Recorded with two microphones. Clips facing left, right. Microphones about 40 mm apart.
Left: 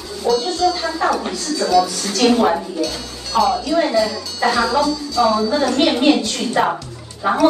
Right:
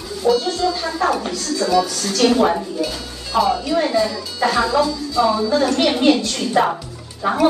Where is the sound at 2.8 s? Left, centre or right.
Centre.